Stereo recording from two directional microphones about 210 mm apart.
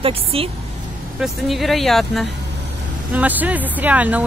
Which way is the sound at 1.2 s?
Centre (ahead or behind).